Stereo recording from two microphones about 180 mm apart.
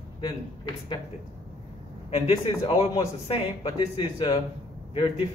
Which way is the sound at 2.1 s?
35° left (ahead or behind).